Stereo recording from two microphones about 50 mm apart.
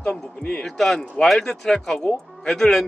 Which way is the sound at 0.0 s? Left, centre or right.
Centre.